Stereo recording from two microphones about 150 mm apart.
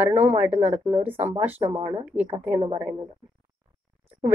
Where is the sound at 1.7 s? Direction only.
30° right (ahead or behind).